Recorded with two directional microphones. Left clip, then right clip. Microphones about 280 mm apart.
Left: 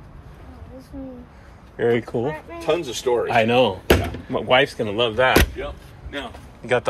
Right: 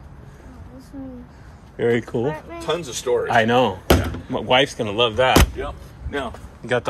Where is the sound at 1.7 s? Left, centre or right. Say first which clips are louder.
Even; centre.